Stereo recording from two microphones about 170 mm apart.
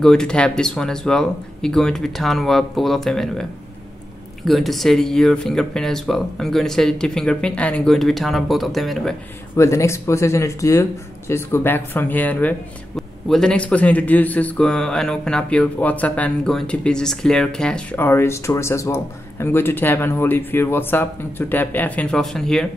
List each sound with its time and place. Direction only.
0.0 s speech: 5° left (ahead or behind)
4.5 s speech: centre (ahead or behind)
9.6 s a man's voice: 15° left (ahead or behind)